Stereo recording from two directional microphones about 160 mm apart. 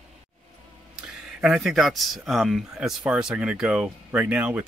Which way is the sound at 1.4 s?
5° right (ahead or behind).